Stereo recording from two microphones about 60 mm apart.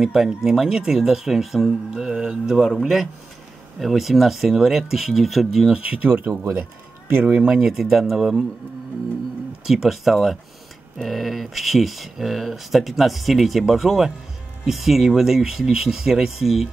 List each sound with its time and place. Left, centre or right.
0.0 s speech: centre
5.7 s speech: centre
7.4 s speech: centre
9.7 s speech: centre